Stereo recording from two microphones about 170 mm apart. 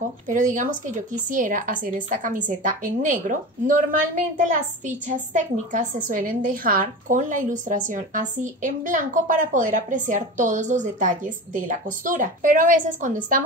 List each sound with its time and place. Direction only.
0.3 s a woman's voice: 50° right (ahead or behind)